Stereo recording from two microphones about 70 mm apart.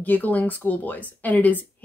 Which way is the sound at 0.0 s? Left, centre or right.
Left.